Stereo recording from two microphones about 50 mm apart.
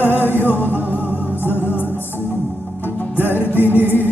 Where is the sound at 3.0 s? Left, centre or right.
Left.